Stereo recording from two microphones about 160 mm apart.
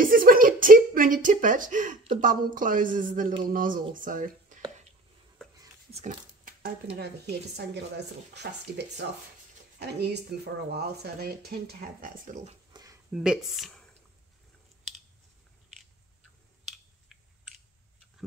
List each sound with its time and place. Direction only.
0.0 s a sound: 60° right (ahead or behind)
2.1 s speech: 55° right (ahead or behind)
5.9 s pig: 50° right (ahead or behind)
6.6 s speech: 90° right; by 12.4 s 60° right (ahead or behind)
12.7 s a sound: 30° right (ahead or behind)
13.1 s speech: 5° right (ahead or behind)